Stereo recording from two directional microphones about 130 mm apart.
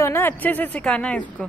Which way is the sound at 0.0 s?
20° left (ahead or behind).